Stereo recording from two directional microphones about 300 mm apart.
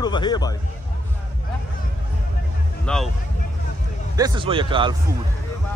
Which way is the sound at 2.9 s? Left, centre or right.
Centre.